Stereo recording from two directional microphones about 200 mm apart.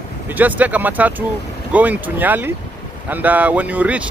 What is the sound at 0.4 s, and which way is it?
Speech, 10° right (ahead or behind).